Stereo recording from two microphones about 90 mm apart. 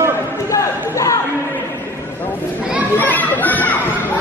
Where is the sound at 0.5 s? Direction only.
40° left (ahead or behind).